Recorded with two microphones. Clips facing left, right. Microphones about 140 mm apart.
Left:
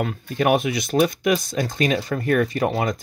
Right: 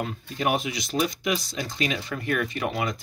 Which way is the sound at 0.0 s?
60° left (ahead or behind).